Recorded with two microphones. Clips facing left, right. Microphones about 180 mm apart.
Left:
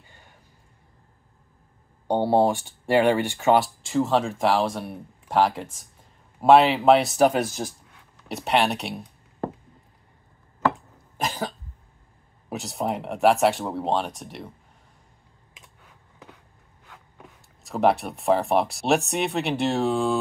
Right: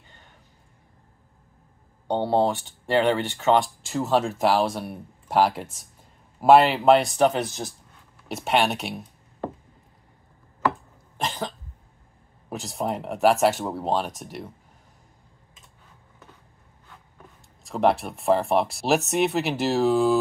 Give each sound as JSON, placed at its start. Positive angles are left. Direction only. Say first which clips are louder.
{"t": 2.0, "sound": "speech", "louder": "left 2 dB", "side_deg": 10}
{"t": 8.3, "sound": "speech", "louder": "even", "side_deg": 0}
{"t": 11.1, "sound": "cough", "louder": "left 1 dB", "side_deg": 5}
{"t": 12.4, "sound": "speech", "louder": "left 1 dB", "side_deg": 0}
{"t": 17.6, "sound": "speech", "louder": "even", "side_deg": 0}